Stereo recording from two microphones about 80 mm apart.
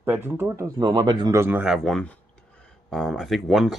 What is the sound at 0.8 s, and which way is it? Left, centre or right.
Speech, right.